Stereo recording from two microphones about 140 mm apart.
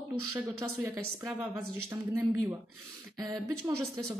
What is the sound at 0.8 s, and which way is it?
Speech, 20° right (ahead or behind).